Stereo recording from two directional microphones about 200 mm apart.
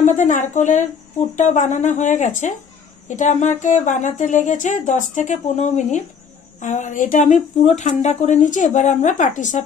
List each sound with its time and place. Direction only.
0.0 s speech: 35° left (ahead or behind)